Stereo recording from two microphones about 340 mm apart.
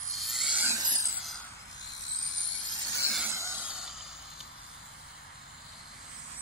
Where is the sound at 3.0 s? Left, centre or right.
Centre.